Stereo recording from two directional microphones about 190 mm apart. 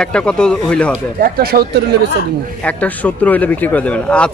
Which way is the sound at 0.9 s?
50° right (ahead or behind).